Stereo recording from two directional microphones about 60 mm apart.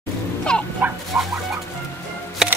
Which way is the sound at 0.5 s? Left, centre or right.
Centre.